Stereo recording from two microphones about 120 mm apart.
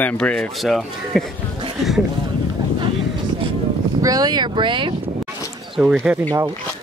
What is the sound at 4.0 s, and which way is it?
Speech, 30° right (ahead or behind).